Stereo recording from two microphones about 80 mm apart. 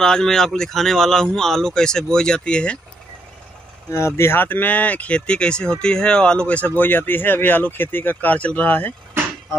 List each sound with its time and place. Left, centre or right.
0.0 s speech: centre
3.9 s speech: left